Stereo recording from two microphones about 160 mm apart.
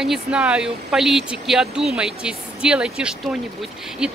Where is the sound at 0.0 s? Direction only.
5° right (ahead or behind).